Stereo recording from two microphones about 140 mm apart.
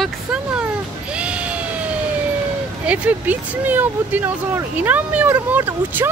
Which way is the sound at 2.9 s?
10° right (ahead or behind).